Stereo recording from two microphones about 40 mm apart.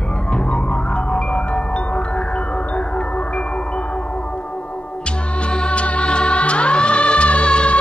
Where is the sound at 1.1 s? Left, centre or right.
Left.